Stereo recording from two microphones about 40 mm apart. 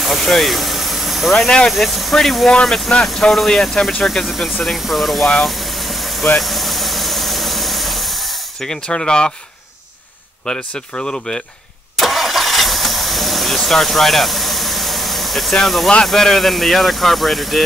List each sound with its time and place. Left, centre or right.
0.0 s vehicle: centre
1.7 s speech: centre
5.4 s vehicle: centre
6.4 s engine: centre
8.8 s speech: left
10.7 s speech: left
12.0 s vehicle: centre
15.5 s speech: centre